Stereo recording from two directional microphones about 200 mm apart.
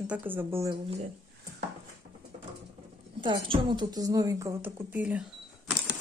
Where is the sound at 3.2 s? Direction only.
25° right (ahead or behind); by 5.9 s 5° right (ahead or behind).